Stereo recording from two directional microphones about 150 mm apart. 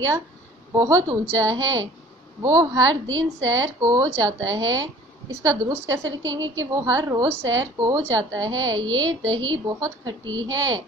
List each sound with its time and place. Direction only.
0.7 s a woman's voice: 20° right (ahead or behind)